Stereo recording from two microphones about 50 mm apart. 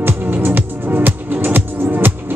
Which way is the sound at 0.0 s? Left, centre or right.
Right.